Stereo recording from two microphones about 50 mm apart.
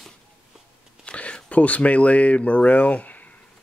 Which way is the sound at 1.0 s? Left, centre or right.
Left.